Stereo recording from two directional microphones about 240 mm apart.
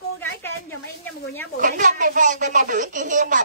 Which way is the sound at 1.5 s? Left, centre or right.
Right.